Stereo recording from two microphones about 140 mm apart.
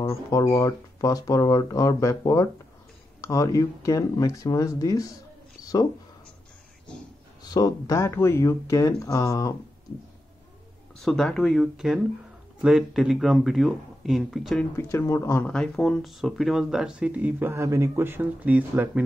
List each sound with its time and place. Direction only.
0.0 s speech: 20° left (ahead or behind)
5.6 s a sound: 25° left (ahead or behind)
7.4 s speech: 25° left (ahead or behind)
11.0 s speech: 5° left (ahead or behind)
14.8 s speech: 20° left (ahead or behind)
15.4 s speech: 5° left (ahead or behind); by 19.0 s 10° right (ahead or behind)